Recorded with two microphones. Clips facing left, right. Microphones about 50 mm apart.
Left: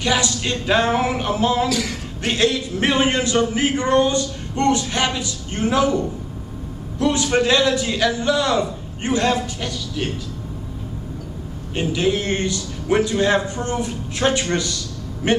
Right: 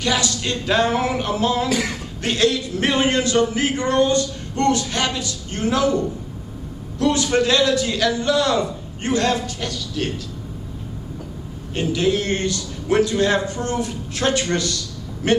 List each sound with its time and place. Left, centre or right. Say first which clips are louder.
0.0 s speech: left 1 dB; centre
1.7 s speech: right 1 dB; right
2.2 s speech: even; centre
11.7 s speech: even; centre